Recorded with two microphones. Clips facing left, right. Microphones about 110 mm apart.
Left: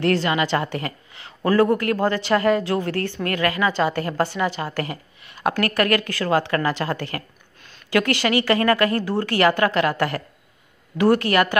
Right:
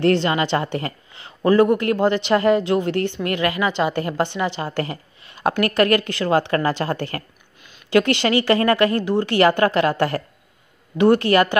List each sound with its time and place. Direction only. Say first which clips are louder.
0.0 s a woman's voice: right 2 dB; 30° right (ahead or behind)